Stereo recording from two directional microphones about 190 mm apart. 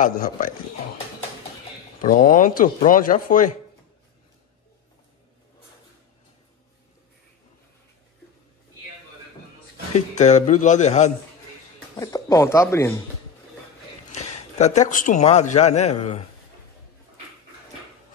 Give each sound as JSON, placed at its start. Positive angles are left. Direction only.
{"t": 0.0, "sound": "speech", "side_deg": 45}
{"t": 2.0, "sound": "speech", "side_deg": 45}
{"t": 9.9, "sound": "speech", "side_deg": 40}
{"t": 12.0, "sound": "speech", "side_deg": 20}
{"t": 14.1, "sound": "a man's voice", "side_deg": 35}